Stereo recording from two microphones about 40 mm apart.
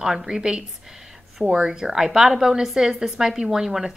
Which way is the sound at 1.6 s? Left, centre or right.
Centre.